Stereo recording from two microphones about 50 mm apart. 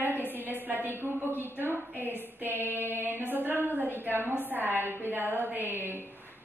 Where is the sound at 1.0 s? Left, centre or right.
Right.